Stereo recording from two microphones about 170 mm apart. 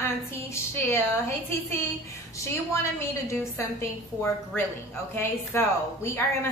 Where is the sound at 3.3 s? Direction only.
15° left (ahead or behind).